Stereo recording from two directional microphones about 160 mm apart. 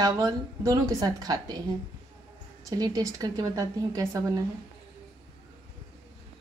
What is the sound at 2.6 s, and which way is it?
A woman's voice, 25° right (ahead or behind).